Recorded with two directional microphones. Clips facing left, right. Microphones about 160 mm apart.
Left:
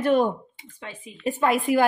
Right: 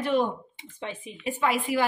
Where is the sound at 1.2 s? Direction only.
45° left (ahead or behind).